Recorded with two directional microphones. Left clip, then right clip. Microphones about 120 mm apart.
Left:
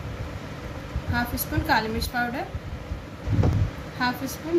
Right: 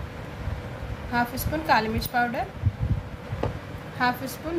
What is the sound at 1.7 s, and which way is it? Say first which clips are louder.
Speech: right 1 dB; 60° right (ahead or behind).